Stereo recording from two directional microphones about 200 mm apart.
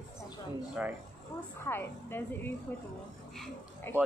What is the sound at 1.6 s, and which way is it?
Speech, 10° left (ahead or behind).